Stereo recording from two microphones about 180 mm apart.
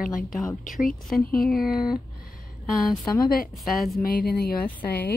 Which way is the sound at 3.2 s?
55° left (ahead or behind).